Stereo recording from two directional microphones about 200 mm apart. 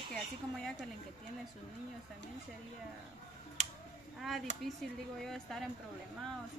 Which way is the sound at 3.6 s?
35° right (ahead or behind).